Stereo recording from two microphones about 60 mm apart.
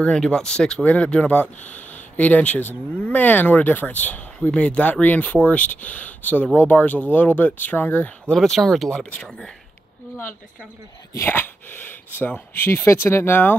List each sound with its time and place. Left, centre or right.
0.0 s speech: centre
0.8 s speech: left
8.4 s speech: centre
11.1 s speech: left